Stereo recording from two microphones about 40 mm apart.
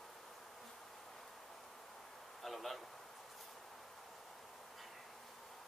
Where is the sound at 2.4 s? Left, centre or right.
Centre.